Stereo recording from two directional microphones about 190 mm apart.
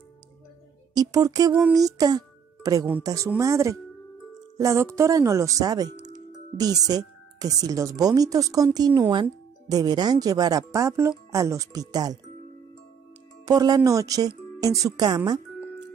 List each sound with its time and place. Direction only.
0.9 s speech: 20° right (ahead or behind)
13.5 s speech: 20° right (ahead or behind)